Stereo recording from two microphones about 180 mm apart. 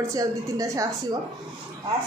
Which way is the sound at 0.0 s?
20° right (ahead or behind).